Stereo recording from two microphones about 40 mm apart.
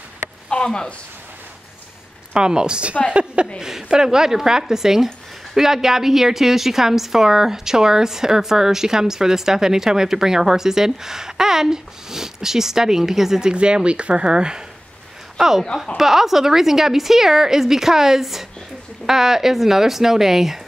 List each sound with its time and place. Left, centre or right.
0.6 s speech: left
2.3 s speech: right
3.5 s a woman's voice: centre
13.5 s speech: right
15.3 s a woman's voice: centre